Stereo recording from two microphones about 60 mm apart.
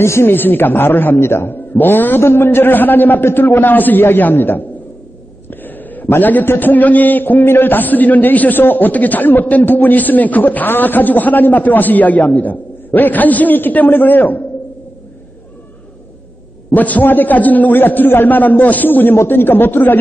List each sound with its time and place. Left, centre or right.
0.0 s speech: left
0.3 s a man's voice: left
16.7 s a man's voice: left